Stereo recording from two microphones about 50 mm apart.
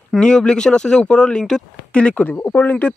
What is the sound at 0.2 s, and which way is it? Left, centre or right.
Speech, centre.